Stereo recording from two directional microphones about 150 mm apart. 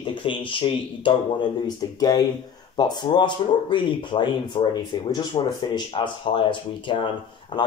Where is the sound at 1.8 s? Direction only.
25° left (ahead or behind).